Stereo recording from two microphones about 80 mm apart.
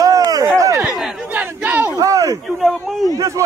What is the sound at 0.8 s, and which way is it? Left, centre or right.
Chatter, centre.